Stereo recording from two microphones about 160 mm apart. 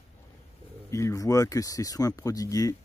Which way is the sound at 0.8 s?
20° left (ahead or behind).